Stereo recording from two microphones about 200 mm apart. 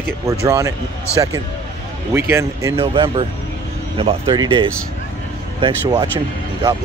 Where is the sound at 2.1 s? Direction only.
10° right (ahead or behind).